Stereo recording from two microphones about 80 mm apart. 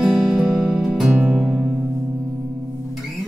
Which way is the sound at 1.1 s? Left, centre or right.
Centre.